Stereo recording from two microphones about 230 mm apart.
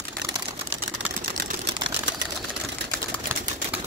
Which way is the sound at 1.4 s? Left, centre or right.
Right.